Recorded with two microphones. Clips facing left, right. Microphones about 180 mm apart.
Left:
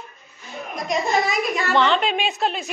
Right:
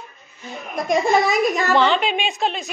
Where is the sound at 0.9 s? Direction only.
45° right (ahead or behind).